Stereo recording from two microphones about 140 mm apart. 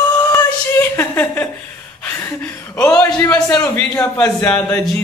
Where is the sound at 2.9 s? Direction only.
15° left (ahead or behind).